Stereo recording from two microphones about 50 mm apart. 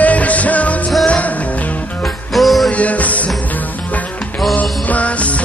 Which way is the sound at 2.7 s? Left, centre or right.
Left.